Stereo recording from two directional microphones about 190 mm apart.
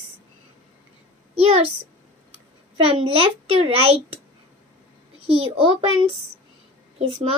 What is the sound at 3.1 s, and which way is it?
A child's voice, 30° right (ahead or behind).